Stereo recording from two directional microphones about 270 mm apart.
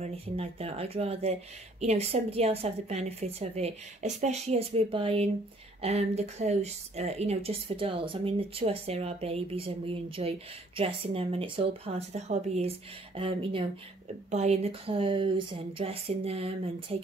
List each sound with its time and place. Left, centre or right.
0.0 s speech: right